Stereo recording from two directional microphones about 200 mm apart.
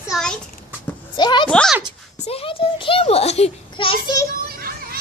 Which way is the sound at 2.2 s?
30° left (ahead or behind).